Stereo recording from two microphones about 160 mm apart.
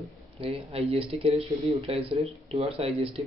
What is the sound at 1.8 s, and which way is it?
Speech, 35° right (ahead or behind).